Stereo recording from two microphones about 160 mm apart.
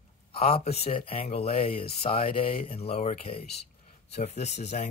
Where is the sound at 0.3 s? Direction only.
40° left (ahead or behind).